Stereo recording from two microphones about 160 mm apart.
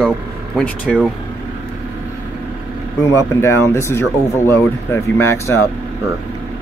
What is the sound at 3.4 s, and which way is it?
Speech, 15° left (ahead or behind).